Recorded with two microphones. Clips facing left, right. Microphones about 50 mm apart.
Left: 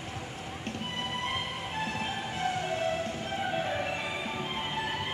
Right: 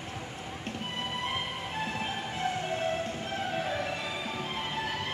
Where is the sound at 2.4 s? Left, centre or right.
Centre.